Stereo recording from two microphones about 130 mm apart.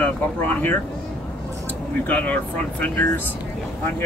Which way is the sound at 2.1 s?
10° left (ahead or behind).